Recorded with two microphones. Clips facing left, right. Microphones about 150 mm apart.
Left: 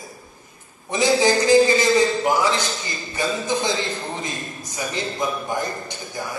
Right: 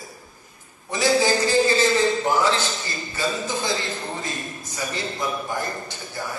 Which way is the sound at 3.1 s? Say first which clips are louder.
Left 3 dB; 20° left (ahead or behind).